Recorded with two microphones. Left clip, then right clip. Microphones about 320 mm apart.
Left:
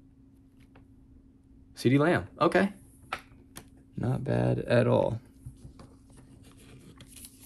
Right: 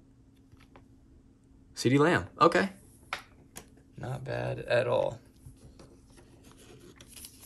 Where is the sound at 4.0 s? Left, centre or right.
Centre.